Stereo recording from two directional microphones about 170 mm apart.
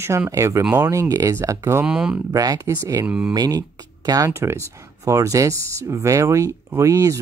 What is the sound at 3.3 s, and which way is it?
Speech, 20° right (ahead or behind).